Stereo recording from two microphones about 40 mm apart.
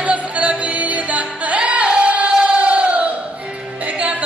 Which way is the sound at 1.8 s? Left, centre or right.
Right.